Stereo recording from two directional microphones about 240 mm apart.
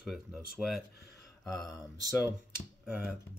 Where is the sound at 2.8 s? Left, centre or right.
Centre.